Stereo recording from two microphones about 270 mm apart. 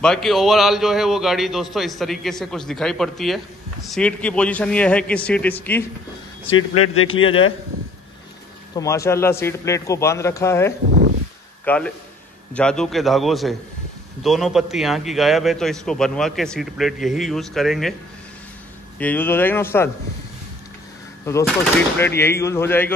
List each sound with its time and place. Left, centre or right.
0.0 s a man's voice: centre
6.4 s a man's voice: left
7.2 s speech: centre
8.7 s a man's voice: centre
18.9 s a man's voice: centre
21.3 s a man's voice: centre